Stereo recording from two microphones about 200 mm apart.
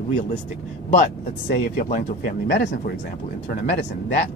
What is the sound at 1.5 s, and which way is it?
Speech, 50° left (ahead or behind).